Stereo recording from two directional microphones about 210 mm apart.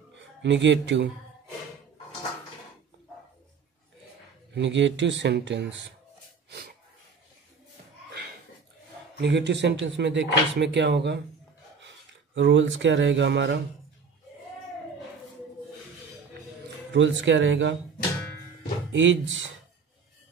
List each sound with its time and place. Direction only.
0.1 s speech: 60° right (ahead or behind)
4.6 s speech: 60° right (ahead or behind)
9.2 s speech: 55° right (ahead or behind)
12.4 s speech: 60° right (ahead or behind)
16.9 s speech: 60° right (ahead or behind)
18.9 s speech: 65° right (ahead or behind)